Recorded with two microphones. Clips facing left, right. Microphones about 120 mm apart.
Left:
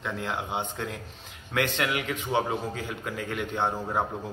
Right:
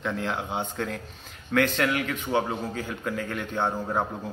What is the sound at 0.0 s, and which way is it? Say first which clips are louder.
Speech: right 3 dB; 10° left (ahead or behind).